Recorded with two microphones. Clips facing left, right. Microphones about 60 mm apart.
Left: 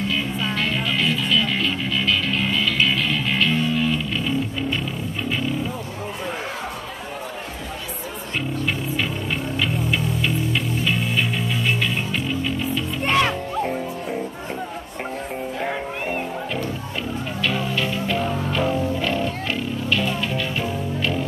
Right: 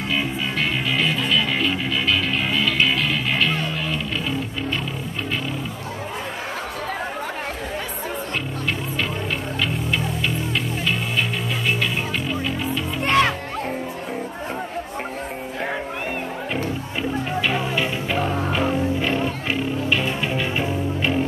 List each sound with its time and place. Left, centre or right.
0.1 s music: centre
9.8 s music: centre
17.4 s music: centre
18.5 s music: centre